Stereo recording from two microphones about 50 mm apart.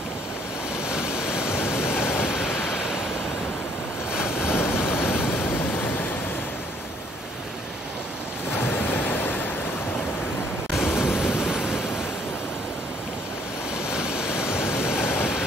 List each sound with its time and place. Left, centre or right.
0.8 s waterfall: centre
1.9 s vehicle: left
2.2 s waves: centre
4.1 s waves: centre
4.4 s vehicle: left
8.5 s waves: left
10.7 s waves: centre
13.8 s waterfall: centre
14.9 s a sound: left